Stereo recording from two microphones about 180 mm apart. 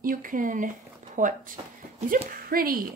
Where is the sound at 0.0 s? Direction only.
50° right (ahead or behind).